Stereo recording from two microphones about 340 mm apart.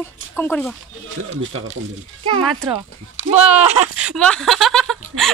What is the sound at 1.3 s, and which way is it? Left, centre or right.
Speech, right.